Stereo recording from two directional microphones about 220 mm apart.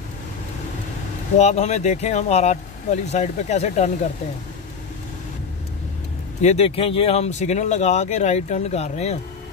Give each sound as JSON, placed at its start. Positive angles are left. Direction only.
{"t": 1.4, "sound": "speech", "side_deg": 30}
{"t": 6.4, "sound": "speech", "side_deg": 30}